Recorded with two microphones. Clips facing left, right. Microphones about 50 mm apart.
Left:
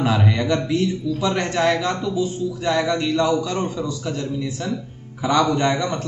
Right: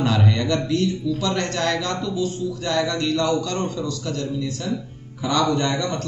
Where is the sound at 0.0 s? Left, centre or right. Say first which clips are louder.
Left 1 dB; centre.